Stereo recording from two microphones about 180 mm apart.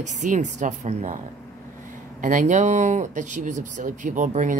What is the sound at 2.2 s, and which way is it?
Speech, 45° right (ahead or behind).